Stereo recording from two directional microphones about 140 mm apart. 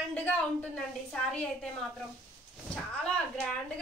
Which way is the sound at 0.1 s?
10° left (ahead or behind).